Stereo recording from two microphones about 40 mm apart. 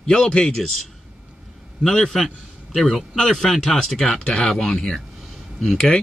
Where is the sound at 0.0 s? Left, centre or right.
Centre.